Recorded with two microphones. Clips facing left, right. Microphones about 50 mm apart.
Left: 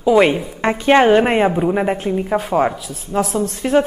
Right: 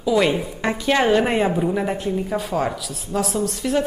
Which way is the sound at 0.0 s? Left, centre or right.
Left.